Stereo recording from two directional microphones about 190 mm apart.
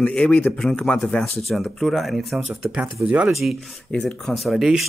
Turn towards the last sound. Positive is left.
turn(degrees=0)  # may be behind; listen again after turning